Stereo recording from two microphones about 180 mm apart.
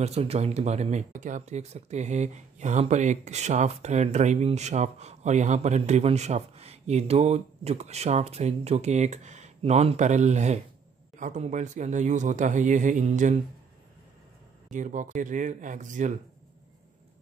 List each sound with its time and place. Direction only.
0.0 s speech: 35° right (ahead or behind)
14.7 s speech: 45° right (ahead or behind)